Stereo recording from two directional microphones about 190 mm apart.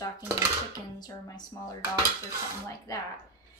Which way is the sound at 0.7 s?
20° left (ahead or behind).